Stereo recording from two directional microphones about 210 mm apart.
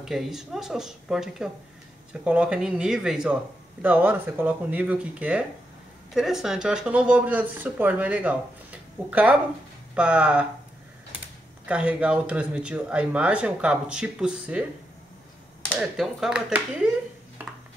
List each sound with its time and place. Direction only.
0.0 s speech: centre (ahead or behind)
11.6 s speech: 5° right (ahead or behind)
15.7 s speech: centre (ahead or behind)